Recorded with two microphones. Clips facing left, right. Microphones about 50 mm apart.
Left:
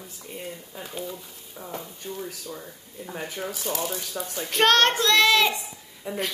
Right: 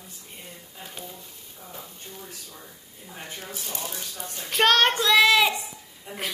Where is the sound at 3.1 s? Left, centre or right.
Left.